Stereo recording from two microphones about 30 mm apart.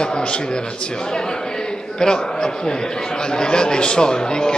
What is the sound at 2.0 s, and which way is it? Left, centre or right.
Speech, left.